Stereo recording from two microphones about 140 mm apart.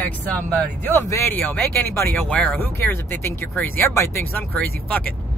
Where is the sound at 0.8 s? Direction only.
20° left (ahead or behind).